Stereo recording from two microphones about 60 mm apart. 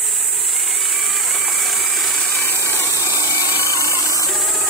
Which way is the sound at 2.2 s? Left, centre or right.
Left.